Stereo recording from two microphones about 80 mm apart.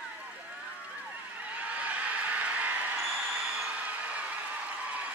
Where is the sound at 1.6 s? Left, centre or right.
Centre.